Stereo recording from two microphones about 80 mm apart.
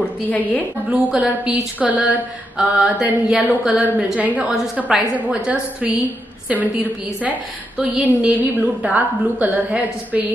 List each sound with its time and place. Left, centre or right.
0.3 s a woman's voice: left
0.8 s a woman's voice: centre
7.8 s a woman's voice: centre